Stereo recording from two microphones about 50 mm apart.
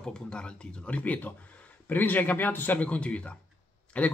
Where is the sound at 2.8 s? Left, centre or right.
Left.